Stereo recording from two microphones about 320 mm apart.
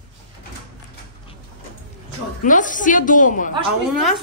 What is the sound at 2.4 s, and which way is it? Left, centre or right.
A woman's voice, left.